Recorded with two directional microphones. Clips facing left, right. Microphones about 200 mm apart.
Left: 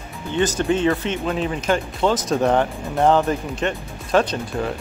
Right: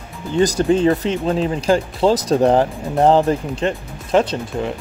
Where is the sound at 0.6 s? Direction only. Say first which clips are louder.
Right 4 dB; 35° right (ahead or behind).